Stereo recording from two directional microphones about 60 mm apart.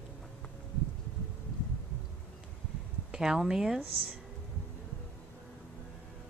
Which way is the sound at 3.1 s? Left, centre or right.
Centre.